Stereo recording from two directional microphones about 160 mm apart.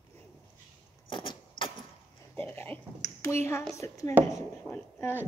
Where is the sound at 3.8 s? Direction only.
20° left (ahead or behind).